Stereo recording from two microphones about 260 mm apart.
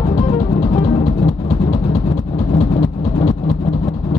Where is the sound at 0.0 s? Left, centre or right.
Centre.